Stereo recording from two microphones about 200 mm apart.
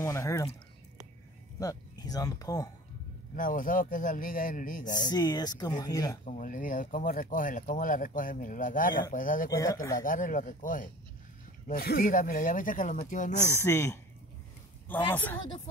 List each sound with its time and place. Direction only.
0.0 s a sound: 15° left (ahead or behind)
1.6 s speech: 15° left (ahead or behind)
3.3 s a man's voice: 45° left (ahead or behind)
4.9 s speech: 20° left (ahead or behind)
6.2 s speech: 40° left (ahead or behind)
9.6 s speech: 15° left (ahead or behind)
10.0 s speech: 40° left (ahead or behind)
13.6 s speech: 10° left (ahead or behind)